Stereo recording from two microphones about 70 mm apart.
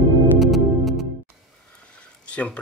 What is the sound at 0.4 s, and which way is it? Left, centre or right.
Music, centre.